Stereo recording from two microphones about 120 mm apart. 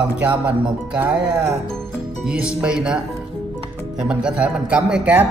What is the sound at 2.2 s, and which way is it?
Speech, 5° right (ahead or behind).